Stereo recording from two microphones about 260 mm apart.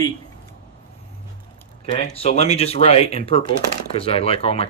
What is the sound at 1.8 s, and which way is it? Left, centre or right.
Speech, left.